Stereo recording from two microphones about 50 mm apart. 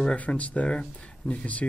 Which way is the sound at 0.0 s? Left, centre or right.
Left.